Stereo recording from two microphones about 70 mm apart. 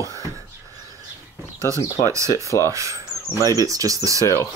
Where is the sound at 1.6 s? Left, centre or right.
Right.